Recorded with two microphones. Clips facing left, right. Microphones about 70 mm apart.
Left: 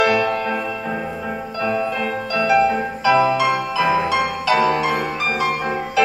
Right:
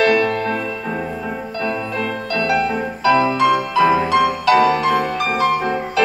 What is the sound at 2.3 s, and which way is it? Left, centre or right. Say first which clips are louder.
Music: left 3 dB; centre.